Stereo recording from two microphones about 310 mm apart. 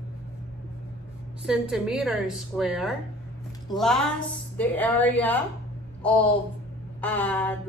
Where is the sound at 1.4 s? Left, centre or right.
Centre.